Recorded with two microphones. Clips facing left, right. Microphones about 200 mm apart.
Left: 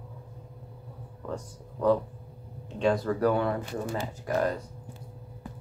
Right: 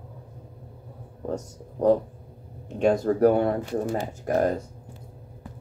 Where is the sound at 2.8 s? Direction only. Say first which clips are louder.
Right 5 dB; 45° right (ahead or behind).